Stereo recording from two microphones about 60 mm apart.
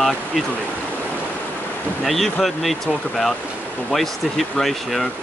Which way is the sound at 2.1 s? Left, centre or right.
Centre.